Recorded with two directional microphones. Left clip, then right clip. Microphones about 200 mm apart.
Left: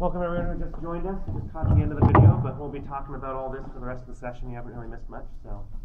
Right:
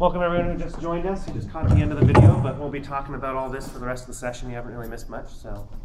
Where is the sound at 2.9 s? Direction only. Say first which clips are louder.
Right 5 dB; 35° right (ahead or behind).